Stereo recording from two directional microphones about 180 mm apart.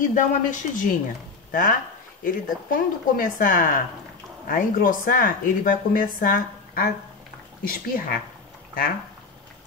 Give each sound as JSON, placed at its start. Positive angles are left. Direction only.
{"t": 0.1, "sound": "a woman's voice", "side_deg": 45}